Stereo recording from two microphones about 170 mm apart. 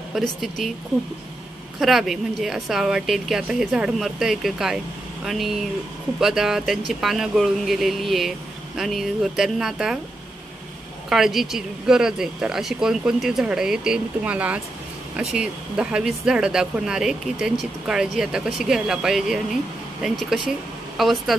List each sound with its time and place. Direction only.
0.1 s speech: centre (ahead or behind)
1.8 s speech: centre (ahead or behind)
11.1 s speech: centre (ahead or behind)